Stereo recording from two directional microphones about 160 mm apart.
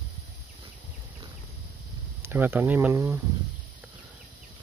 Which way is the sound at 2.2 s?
15° right (ahead or behind).